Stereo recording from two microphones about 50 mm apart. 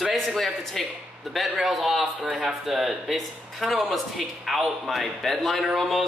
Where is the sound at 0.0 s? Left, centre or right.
Centre.